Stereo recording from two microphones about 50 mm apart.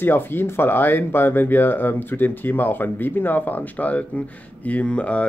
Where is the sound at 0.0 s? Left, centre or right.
Left.